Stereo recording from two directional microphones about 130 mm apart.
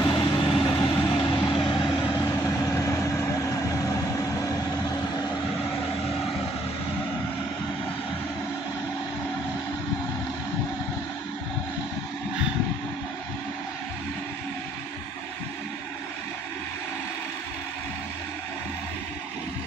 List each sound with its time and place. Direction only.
0.0 s vehicle: 40° left (ahead or behind)